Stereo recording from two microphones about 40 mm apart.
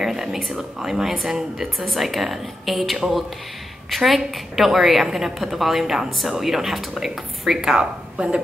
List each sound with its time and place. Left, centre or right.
0.0 s speech: centre
1.9 s a woman's voice: centre
7.8 s a woman's voice: right